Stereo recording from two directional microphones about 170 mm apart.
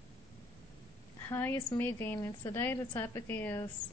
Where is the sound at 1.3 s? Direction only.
15° left (ahead or behind).